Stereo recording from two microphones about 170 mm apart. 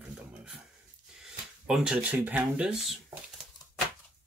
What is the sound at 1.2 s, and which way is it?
Speech, 5° right (ahead or behind).